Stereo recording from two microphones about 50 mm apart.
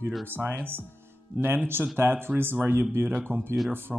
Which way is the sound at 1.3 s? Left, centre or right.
Right.